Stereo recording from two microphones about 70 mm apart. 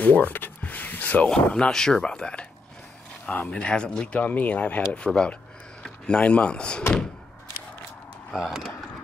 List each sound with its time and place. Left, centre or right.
0.0 s speech: left
8.3 s speech: centre